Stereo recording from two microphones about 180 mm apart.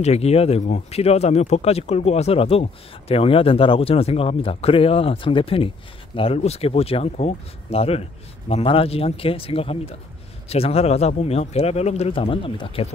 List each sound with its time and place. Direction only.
0.0 s speech: 35° left (ahead or behind)